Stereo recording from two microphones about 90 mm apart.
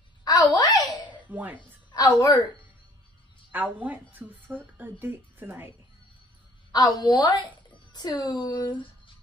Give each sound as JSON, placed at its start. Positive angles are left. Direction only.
{"t": 0.2, "sound": "a sound", "side_deg": 45}
{"t": 1.1, "sound": "cough", "side_deg": -15}
{"t": 1.6, "sound": "a woman's voice", "side_deg": 55}
{"t": 3.5, "sound": "a woman's voice", "side_deg": -20}
{"t": 6.7, "sound": "speech", "side_deg": 50}